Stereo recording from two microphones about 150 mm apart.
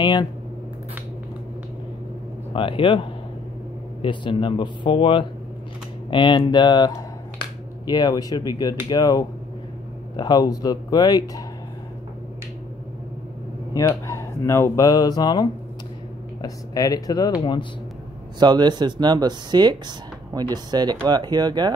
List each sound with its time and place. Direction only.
0.0 s speech: 30° left (ahead or behind)
2.5 s speech: 35° left (ahead or behind)
13.7 s speech: 20° left (ahead or behind)
18.4 s speech: 30° right (ahead or behind)